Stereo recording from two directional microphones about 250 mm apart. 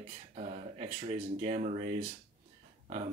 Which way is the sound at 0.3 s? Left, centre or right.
Right.